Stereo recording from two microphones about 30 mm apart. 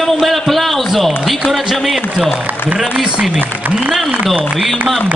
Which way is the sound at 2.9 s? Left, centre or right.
Right.